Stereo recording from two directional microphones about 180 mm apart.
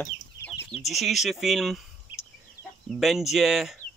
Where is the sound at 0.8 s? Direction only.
Centre (ahead or behind).